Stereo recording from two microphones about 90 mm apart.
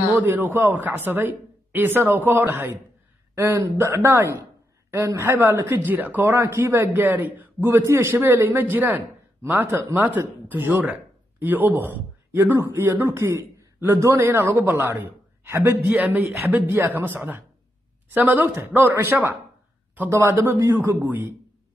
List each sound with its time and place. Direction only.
0.2 s a woman's voice: 20° right (ahead or behind)
15.9 s speech: 15° right (ahead or behind)
18.4 s speech: 20° right (ahead or behind)